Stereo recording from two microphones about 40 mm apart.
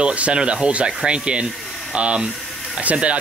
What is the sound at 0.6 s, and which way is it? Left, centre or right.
Rub, right.